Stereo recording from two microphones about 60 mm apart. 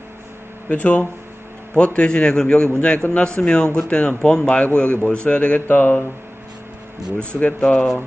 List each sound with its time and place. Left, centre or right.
0.7 s a man's voice: left
7.2 s a man's voice: centre